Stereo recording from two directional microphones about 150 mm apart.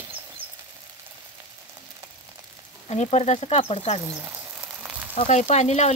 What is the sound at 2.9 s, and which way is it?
Speech, 45° left (ahead or behind).